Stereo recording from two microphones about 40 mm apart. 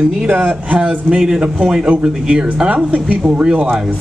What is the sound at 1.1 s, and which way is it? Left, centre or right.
Speech, centre.